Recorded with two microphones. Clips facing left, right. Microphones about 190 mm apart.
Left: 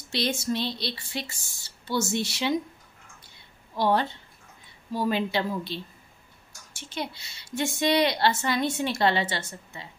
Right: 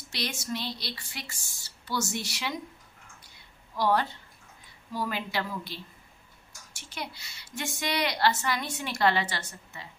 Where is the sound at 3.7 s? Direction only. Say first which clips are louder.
Left 2 dB; 25° left (ahead or behind).